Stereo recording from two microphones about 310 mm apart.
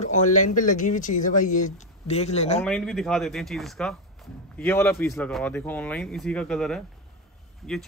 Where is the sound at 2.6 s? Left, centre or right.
Centre.